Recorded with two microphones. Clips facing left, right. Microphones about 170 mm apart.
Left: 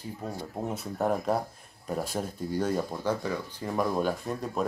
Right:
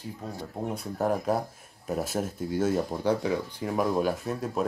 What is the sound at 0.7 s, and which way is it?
Speech, centre (ahead or behind).